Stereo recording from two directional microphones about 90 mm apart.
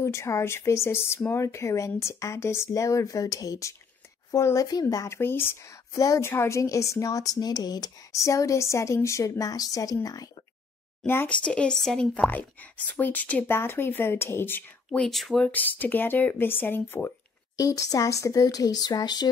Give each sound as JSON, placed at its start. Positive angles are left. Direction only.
{"t": 0.0, "sound": "a woman's voice", "side_deg": 30}
{"t": 5.9, "sound": "a woman's voice", "side_deg": 35}
{"t": 11.1, "sound": "a woman's voice", "side_deg": 25}
{"t": 11.4, "sound": "a woman's voice", "side_deg": 10}
{"t": 14.9, "sound": "speech", "side_deg": 5}
{"t": 15.4, "sound": "a woman's voice", "side_deg": 20}
{"t": 17.6, "sound": "a woman's voice", "side_deg": 40}